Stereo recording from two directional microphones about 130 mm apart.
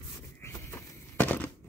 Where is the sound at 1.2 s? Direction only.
15° left (ahead or behind).